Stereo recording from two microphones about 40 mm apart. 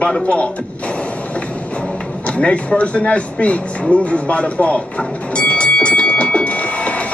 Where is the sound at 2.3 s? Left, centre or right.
Left.